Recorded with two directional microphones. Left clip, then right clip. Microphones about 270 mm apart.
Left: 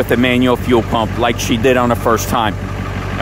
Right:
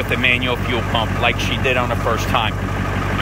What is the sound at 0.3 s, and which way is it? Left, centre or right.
Speech, left.